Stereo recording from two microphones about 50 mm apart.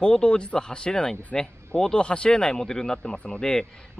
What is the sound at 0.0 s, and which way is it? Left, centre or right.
Speech, centre.